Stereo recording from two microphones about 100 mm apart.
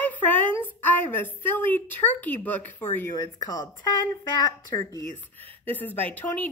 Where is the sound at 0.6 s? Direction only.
20° left (ahead or behind).